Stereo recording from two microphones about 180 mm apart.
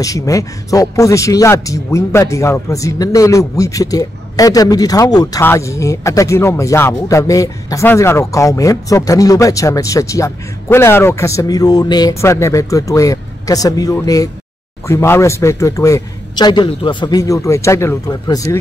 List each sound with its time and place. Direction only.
0.0 s speech: 20° left (ahead or behind)